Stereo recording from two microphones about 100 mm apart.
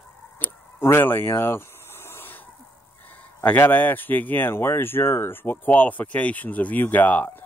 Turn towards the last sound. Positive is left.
turn(degrees=15)  # may be behind; listen again after turning